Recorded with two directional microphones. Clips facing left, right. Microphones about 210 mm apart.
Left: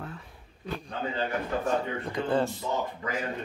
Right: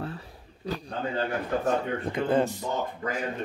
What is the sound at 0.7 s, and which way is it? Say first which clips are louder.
Speech: right 3 dB; 35° right (ahead or behind).